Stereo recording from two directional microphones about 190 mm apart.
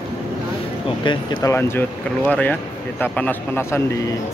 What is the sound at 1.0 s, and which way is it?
Speech, 15° left (ahead or behind).